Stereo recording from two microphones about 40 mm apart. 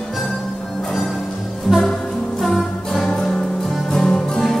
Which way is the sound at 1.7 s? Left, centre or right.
Centre.